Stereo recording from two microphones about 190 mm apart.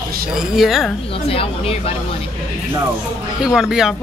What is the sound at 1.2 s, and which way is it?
Speech, 30° left (ahead or behind).